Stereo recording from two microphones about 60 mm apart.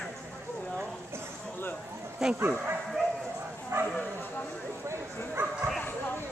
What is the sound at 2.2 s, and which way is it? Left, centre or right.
Speech, centre.